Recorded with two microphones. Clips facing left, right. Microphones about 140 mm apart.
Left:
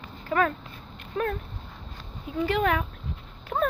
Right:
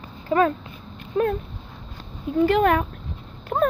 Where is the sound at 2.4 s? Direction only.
50° right (ahead or behind).